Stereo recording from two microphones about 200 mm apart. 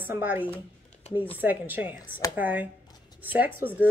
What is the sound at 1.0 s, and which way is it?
Speech, 30° left (ahead or behind).